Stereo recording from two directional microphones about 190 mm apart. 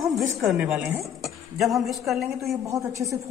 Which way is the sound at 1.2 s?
Centre (ahead or behind).